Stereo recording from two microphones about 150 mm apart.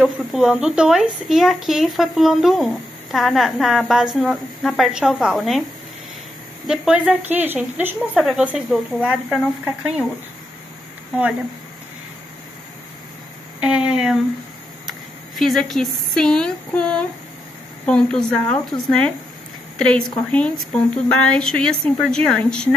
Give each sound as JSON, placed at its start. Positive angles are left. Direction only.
{"t": 0.0, "sound": "speech", "side_deg": -5}
{"t": 6.7, "sound": "a woman's voice", "side_deg": -5}
{"t": 13.6, "sound": "a woman's voice", "side_deg": -5}